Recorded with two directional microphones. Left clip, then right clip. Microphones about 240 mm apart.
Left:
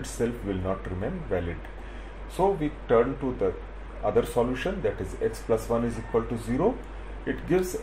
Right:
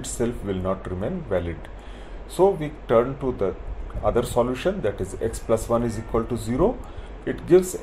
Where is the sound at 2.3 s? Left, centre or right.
Right.